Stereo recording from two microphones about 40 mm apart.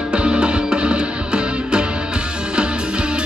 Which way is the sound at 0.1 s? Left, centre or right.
Right.